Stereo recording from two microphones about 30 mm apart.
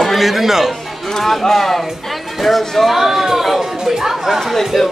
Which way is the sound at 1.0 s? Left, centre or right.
Centre.